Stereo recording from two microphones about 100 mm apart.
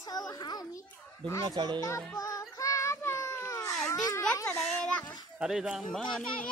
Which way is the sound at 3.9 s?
35° left (ahead or behind).